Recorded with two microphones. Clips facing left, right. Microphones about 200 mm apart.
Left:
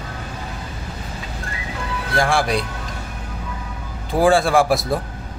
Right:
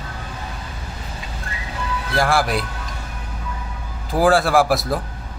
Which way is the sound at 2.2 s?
Centre (ahead or behind).